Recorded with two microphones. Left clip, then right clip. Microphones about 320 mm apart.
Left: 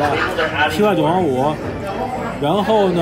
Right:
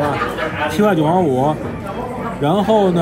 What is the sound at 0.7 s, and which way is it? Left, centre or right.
Speech, centre.